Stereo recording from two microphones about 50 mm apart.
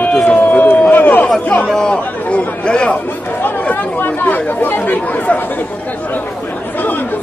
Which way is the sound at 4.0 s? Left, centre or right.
Left.